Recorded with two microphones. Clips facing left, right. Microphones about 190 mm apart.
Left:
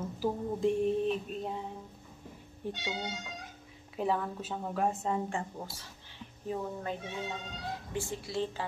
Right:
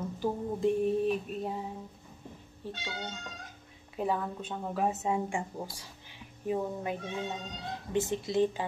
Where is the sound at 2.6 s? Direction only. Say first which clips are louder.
Left 3 dB; 15° left (ahead or behind).